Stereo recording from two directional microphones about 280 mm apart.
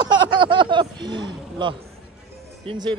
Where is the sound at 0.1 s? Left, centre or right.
Centre.